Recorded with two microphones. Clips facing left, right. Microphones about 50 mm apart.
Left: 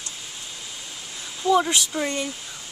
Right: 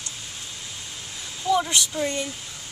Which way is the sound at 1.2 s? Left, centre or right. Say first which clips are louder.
Left 3 dB; centre.